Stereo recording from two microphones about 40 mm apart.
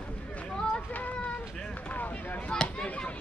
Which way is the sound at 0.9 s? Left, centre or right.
Left.